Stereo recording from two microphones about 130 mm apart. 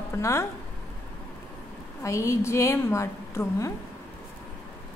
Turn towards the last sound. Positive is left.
turn(degrees=20)  # may be behind; listen again after turning